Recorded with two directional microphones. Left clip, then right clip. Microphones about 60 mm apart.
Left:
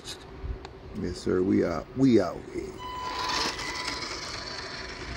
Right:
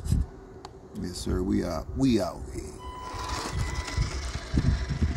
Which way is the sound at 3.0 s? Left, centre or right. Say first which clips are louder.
Left 5 dB; centre.